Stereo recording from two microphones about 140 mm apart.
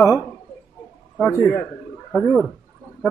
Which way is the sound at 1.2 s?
20° left (ahead or behind).